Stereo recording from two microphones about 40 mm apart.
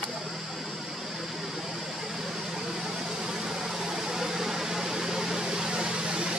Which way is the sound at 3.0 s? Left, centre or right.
Centre.